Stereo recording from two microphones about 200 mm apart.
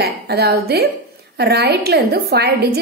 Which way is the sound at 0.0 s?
50° right (ahead or behind).